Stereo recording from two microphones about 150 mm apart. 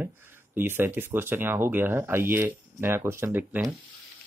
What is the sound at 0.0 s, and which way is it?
Speech, 15° right (ahead or behind).